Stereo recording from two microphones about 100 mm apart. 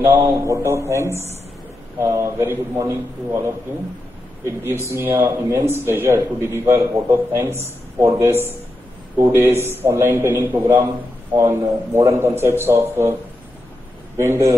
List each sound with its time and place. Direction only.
0.0 s speech: 25° right (ahead or behind)
4.5 s speech: 25° right (ahead or behind)
14.1 s speech: 25° right (ahead or behind)